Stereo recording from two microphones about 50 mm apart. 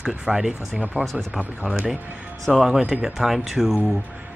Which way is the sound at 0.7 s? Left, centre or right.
Right.